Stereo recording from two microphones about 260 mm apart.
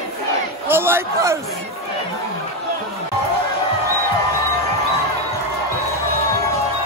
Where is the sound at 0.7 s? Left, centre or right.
Centre.